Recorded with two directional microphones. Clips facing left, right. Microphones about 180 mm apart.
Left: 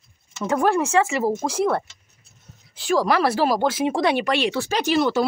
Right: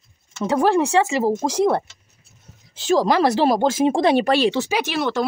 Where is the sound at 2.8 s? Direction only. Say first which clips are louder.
Right 3 dB; 25° right (ahead or behind).